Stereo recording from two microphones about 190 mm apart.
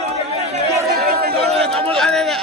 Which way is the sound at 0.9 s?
50° right (ahead or behind).